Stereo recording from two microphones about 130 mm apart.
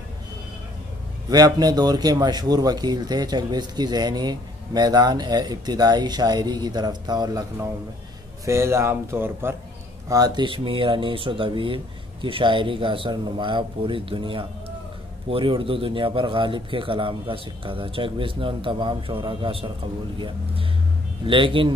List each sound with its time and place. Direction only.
1.3 s speech: 30° right (ahead or behind)
8.5 s speech: 20° right (ahead or behind)
10.0 s speech: 30° right (ahead or behind)